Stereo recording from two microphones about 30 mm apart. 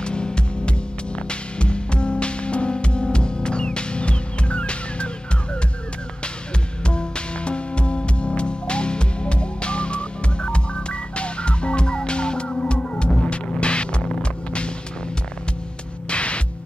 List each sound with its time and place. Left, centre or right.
0.0 s music: left
6.8 s music: left
16.1 s music: left